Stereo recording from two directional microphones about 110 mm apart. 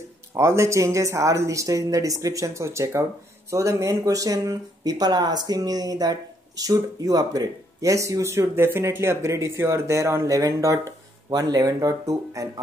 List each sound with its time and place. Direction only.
0.3 s speech: 25° right (ahead or behind)